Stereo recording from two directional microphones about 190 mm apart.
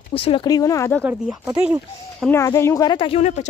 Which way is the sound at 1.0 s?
10° right (ahead or behind).